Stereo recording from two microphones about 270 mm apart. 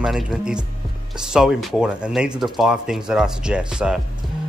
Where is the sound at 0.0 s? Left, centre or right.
Centre.